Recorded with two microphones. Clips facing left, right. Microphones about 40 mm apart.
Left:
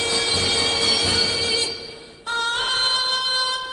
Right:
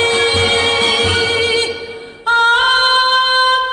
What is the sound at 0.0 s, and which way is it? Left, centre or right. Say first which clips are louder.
Music: right 9 dB; right.